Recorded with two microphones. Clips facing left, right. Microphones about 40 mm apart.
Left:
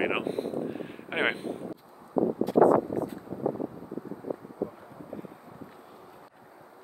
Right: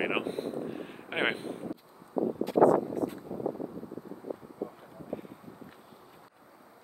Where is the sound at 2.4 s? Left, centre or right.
Right.